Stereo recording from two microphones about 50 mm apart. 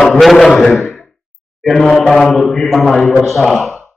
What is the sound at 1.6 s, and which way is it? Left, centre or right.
A man's voice, centre.